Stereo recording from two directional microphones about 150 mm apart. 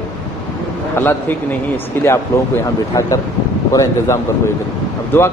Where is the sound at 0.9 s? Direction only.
15° left (ahead or behind).